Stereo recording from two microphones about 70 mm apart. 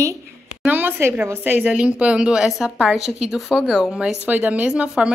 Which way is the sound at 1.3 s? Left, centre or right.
Right.